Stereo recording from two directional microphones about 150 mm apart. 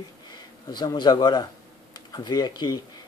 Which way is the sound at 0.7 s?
30° left (ahead or behind).